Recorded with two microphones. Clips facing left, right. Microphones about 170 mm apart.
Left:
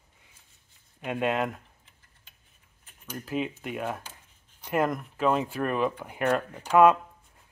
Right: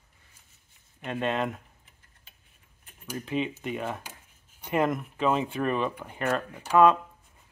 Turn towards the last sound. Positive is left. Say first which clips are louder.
# left 1 dB
turn(degrees=10)  # may be behind; listen again after turning